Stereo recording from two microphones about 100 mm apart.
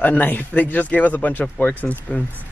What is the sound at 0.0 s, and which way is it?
Speech, 15° left (ahead or behind).